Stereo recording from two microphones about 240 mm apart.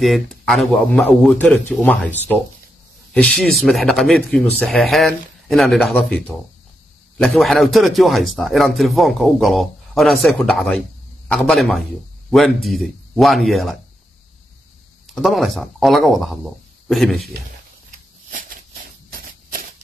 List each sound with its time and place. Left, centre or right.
0.0 s a man's voice: centre
15.2 s a man's voice: centre
18.3 s a sound: right